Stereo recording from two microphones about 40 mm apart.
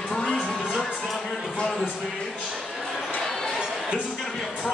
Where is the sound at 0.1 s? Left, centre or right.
Centre.